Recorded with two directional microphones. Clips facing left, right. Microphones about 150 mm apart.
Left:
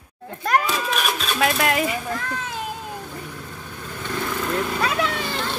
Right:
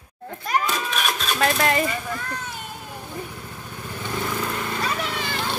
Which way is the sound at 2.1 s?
90° left.